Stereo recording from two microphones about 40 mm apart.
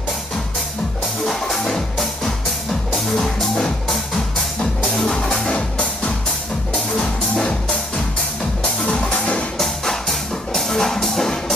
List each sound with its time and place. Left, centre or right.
1.2 s music: centre
5.1 s music: centre
5.5 s music: left
8.8 s music: left
9.6 s music: centre